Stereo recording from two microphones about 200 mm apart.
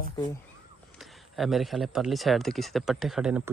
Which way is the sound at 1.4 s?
Centre (ahead or behind).